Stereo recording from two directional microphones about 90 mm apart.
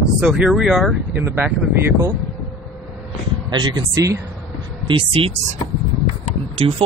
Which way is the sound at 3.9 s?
35° right (ahead or behind).